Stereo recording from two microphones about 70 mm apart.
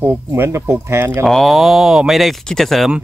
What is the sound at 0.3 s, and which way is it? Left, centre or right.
Speech, right.